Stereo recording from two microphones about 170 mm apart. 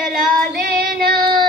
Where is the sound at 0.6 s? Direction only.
60° right (ahead or behind).